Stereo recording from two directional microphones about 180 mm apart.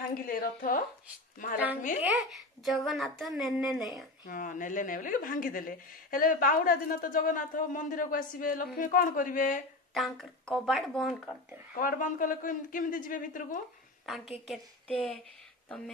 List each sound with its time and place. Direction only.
0.1 s a woman's voice: 50° left (ahead or behind)
2.0 s speech: centre (ahead or behind)
4.3 s a woman's voice: 45° left (ahead or behind)
9.9 s speech: centre (ahead or behind)
11.7 s a woman's voice: 50° left (ahead or behind)
14.0 s speech: centre (ahead or behind)